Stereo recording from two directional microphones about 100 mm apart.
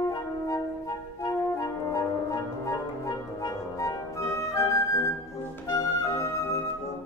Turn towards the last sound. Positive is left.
turn(degrees=30)  # may be behind; listen again after turning